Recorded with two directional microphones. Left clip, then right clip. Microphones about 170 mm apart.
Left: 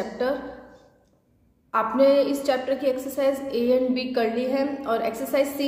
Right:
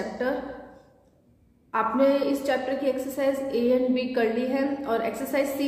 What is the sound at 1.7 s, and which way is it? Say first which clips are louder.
A woman's voice: left 3 dB; 20° left (ahead or behind).